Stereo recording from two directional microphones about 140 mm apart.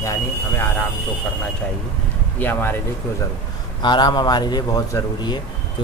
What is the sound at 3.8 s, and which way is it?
Speech, 30° left (ahead or behind).